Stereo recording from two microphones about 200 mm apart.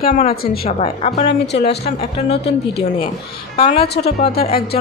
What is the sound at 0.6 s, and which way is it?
Speech, 30° left (ahead or behind).